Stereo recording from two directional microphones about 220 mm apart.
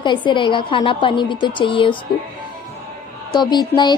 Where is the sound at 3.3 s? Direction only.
20° left (ahead or behind).